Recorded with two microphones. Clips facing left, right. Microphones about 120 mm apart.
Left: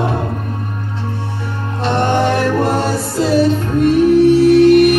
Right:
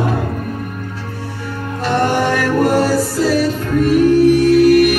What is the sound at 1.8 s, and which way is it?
Music, 25° left (ahead or behind).